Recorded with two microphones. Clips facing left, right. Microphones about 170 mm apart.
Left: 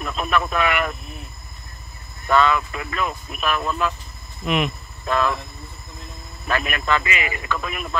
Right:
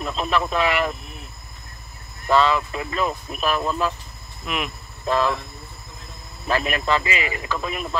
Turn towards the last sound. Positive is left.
turn(degrees=-25)  # may be behind; listen again after turning